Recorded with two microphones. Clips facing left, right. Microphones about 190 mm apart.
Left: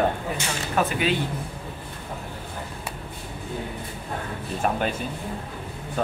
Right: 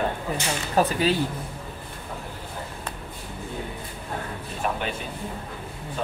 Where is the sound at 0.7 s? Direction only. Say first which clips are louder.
Right 2 dB; 35° right (ahead or behind).